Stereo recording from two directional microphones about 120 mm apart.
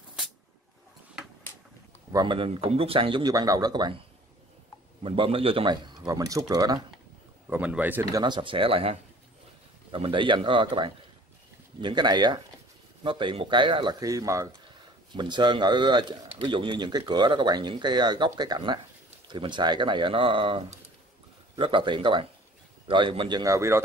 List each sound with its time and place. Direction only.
2.1 s speech: 40° right (ahead or behind)
5.0 s speech: 45° right (ahead or behind)
6.0 s speech: 30° right (ahead or behind)
7.4 s speech: 15° right (ahead or behind)
8.0 s speech: 35° right (ahead or behind)
14.7 s speech: 40° right (ahead or behind)
23.4 s speech: 25° right (ahead or behind)